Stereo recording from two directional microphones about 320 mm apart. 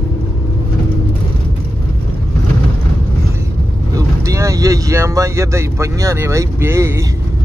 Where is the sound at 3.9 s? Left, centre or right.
Centre.